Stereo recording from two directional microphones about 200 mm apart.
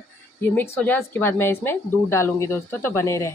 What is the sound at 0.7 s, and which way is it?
Speech, 10° left (ahead or behind).